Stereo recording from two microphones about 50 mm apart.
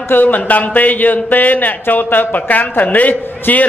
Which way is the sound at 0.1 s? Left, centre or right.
Left.